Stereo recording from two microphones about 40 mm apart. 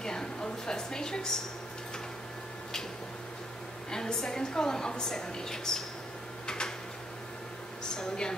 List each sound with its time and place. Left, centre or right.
0.0 s a sound: centre
3.9 s a woman's voice: centre
6.4 s tick-tock: left
7.9 s speech: centre